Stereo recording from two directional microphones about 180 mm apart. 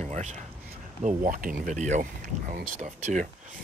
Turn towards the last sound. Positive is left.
turn(degrees=-45)  # may be behind; listen again after turning